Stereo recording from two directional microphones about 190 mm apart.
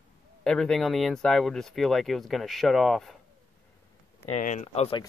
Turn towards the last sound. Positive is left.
turn(degrees=30)  # may be behind; listen again after turning